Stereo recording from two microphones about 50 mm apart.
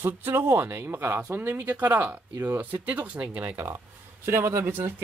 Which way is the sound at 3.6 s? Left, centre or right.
Right.